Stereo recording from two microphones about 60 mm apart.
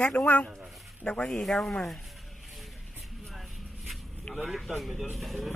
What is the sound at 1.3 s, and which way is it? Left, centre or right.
Speech, centre.